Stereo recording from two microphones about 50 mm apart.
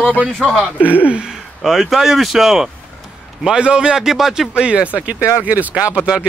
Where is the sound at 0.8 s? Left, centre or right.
Left.